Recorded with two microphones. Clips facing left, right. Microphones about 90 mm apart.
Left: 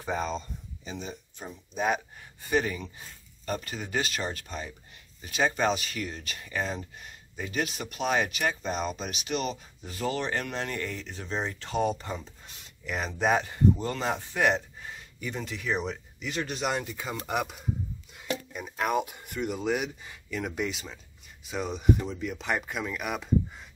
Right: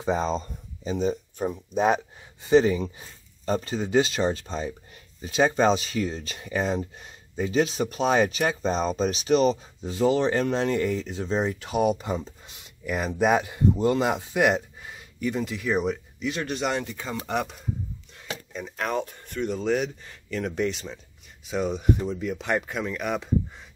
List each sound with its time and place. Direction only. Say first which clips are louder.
0.0 s speech: right 6 dB; 25° right (ahead or behind)
0.3 s speech: right 5 dB; 40° right (ahead or behind)
2.5 s speech: right 9 dB; 25° right (ahead or behind)
9.8 s speech: right 9 dB; 20° right (ahead or behind)
12.8 s speech: right 4 dB; 5° right (ahead or behind)